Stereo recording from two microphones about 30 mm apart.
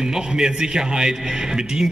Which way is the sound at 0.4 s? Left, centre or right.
Right.